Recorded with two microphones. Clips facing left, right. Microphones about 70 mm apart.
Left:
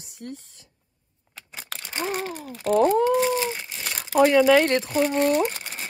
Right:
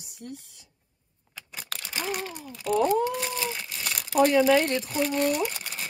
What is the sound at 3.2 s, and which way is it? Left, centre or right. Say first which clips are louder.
Crumpling: left 7 dB; left.